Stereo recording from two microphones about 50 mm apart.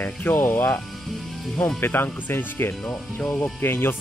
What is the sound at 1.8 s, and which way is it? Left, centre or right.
Speech, left.